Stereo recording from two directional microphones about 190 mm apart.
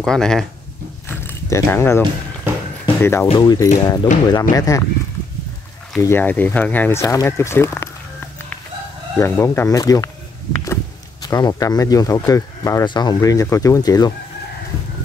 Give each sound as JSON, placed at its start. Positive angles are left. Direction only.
{"t": 0.0, "sound": "speech", "side_deg": 5}
{"t": 1.0, "sound": "a sound", "side_deg": 10}
{"t": 3.0, "sound": "speech", "side_deg": 10}
{"t": 5.9, "sound": "speech", "side_deg": 10}
{"t": 9.2, "sound": "speech", "side_deg": 15}